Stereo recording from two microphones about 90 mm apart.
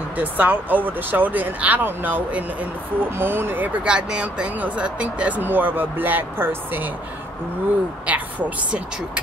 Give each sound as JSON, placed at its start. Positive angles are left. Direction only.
{"t": 0.2, "sound": "speech", "side_deg": -20}
{"t": 8.1, "sound": "speech", "side_deg": -15}